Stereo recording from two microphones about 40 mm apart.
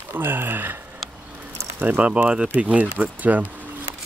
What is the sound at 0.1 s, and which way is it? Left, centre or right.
Speech, right.